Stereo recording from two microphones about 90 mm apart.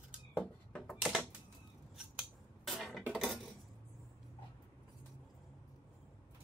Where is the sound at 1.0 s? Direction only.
5° right (ahead or behind).